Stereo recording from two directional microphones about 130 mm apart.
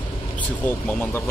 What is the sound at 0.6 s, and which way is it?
Speech, 20° left (ahead or behind).